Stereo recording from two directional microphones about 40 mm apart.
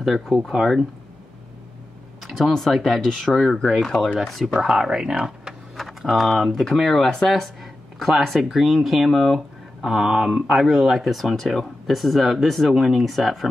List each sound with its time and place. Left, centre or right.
0.0 s speech: centre
2.5 s speech: centre
4.6 s speech: centre
5.8 s speech: centre
9.8 s speech: centre